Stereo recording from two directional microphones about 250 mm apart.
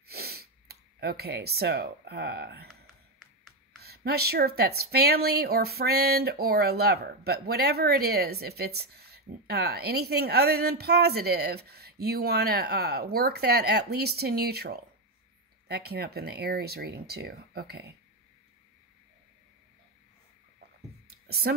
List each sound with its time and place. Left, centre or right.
0.0 s snort: right
3.8 s speech: right
21.3 s speech: right